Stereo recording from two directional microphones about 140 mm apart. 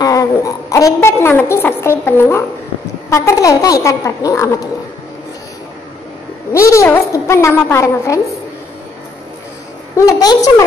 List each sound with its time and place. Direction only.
0.0 s a woman's voice: 25° left (ahead or behind)
6.5 s a woman's voice: 20° left (ahead or behind)
9.9 s a woman's voice: 25° left (ahead or behind)